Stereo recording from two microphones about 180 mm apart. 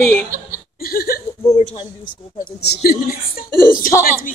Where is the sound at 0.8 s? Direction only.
55° left (ahead or behind).